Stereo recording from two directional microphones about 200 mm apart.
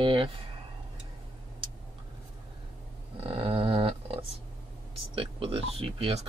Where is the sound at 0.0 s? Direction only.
25° right (ahead or behind).